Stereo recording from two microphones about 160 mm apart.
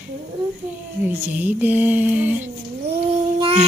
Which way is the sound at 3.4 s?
35° right (ahead or behind).